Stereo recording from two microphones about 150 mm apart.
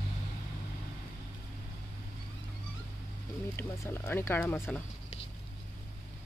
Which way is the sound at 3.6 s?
15° left (ahead or behind).